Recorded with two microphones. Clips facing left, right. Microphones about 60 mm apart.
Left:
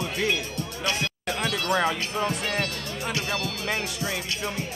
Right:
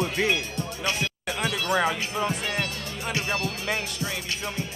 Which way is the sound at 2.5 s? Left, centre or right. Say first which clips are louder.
Left 1 dB; centre.